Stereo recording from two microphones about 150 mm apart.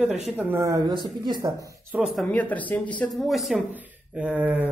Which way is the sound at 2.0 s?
Centre (ahead or behind).